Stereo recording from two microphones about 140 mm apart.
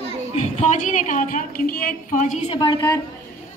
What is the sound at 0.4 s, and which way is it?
A woman's voice, 55° left (ahead or behind).